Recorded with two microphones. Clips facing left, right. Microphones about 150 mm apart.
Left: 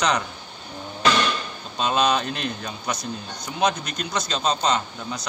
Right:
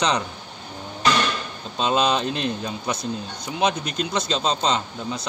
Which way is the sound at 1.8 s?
25° right (ahead or behind).